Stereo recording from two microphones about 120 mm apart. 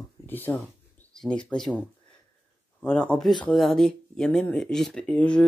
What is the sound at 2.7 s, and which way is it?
Speech, 10° left (ahead or behind).